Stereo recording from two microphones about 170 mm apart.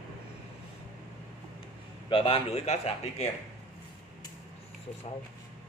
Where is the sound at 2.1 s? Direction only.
35° left (ahead or behind).